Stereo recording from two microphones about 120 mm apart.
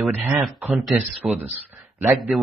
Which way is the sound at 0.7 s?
Centre (ahead or behind).